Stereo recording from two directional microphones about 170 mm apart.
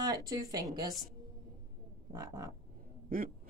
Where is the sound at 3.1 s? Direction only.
55° right (ahead or behind).